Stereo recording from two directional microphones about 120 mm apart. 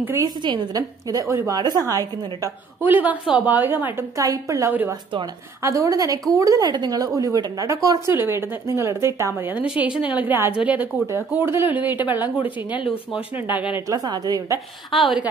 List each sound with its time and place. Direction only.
0.2 s a woman's voice: 35° right (ahead or behind)
2.8 s a woman's voice: 15° right (ahead or behind)
4.2 s a woman's voice: 30° right (ahead or behind)
12.6 s speech: 40° left (ahead or behind)
13.4 s a woman's voice: 15° right (ahead or behind)
13.8 s a woman's voice: 35° right (ahead or behind)
14.9 s a woman's voice: centre (ahead or behind)